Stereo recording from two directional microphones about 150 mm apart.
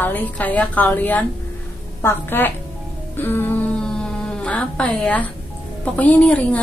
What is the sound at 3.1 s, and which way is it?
Music, 15° left (ahead or behind).